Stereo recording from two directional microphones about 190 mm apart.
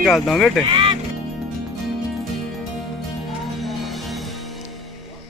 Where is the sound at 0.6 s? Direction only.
25° right (ahead or behind).